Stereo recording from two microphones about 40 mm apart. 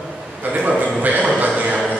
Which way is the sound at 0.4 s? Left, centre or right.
Right.